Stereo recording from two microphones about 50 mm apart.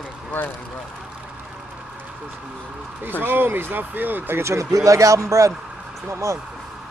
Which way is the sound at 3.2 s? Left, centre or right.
Right.